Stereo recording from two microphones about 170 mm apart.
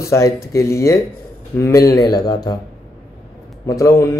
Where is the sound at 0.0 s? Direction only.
15° left (ahead or behind).